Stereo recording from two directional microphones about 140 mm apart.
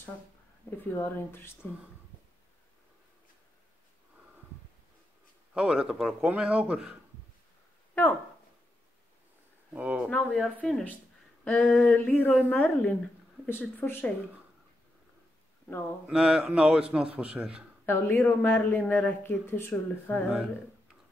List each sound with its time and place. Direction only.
0.7 s speech: 15° left (ahead or behind)
5.5 s speech: 5° right (ahead or behind)
9.7 s speech: 10° right (ahead or behind)
10.0 s speech: 5° left (ahead or behind)
11.7 s mantra: centre (ahead or behind)
12.0 s speech: 15° left (ahead or behind)
16.1 s mantra: 5° right (ahead or behind)
16.9 s speech: 10° right (ahead or behind)
17.8 s speech: 15° left (ahead or behind)